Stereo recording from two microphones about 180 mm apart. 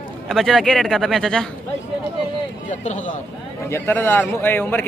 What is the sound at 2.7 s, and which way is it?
Speech, 45° left (ahead or behind).